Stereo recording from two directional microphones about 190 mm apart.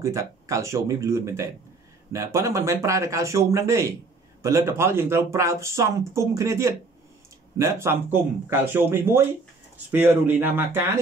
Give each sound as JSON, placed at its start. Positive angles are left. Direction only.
{"t": 0.0, "sound": "speech", "side_deg": -15}